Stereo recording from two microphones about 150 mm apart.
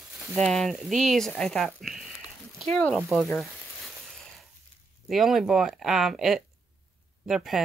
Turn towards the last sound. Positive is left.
turn(degrees=0)  # may be behind; listen again after turning